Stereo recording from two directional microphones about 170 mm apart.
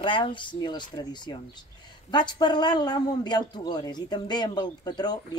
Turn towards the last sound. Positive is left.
turn(degrees=25)  # may be behind; listen again after turning